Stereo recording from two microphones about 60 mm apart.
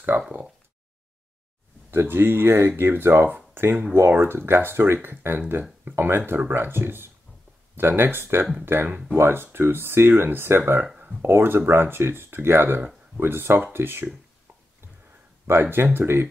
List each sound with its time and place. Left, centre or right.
1.9 s speech: right
3.3 s speech: right
15.4 s speech: right